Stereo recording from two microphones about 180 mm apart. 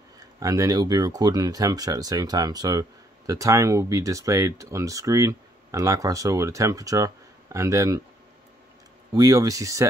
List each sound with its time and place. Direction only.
0.4 s speech: 20° right (ahead or behind)
9.1 s speech: 20° right (ahead or behind)